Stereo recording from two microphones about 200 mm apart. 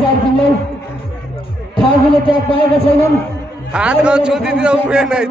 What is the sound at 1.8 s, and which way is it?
A man's voice, 25° left (ahead or behind).